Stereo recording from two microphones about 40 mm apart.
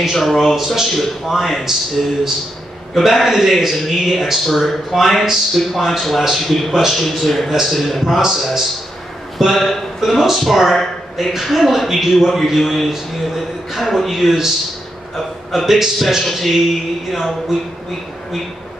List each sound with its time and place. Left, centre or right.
0.0 s a man's voice: centre
0.6 s speech: centre
0.9 s a man's voice: centre
2.9 s a man's voice: centre
9.9 s a man's voice: centre
15.5 s a man's voice: centre